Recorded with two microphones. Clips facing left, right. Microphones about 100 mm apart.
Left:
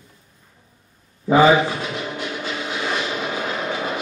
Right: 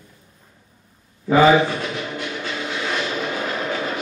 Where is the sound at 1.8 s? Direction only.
15° left (ahead or behind).